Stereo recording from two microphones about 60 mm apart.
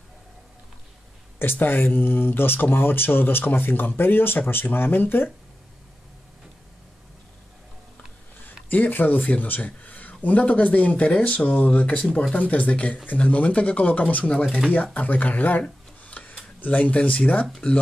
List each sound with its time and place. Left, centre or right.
1.4 s speech: left
8.5 s speech: left
11.1 s speech: centre
11.6 s speech: left
12.1 s speech: centre
12.4 s speech: left
14.2 s speech: centre
14.7 s speech: left
16.1 s a sound: left